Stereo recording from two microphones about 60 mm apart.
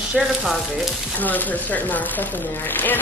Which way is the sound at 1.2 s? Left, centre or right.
Left.